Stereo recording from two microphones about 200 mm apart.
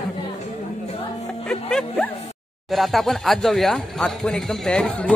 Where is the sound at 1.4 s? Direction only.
5° left (ahead or behind).